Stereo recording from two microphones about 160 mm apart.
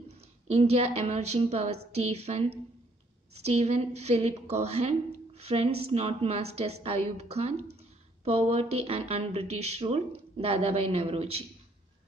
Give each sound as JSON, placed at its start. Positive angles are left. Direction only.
{"t": 0.5, "sound": "a woman's voice", "side_deg": -40}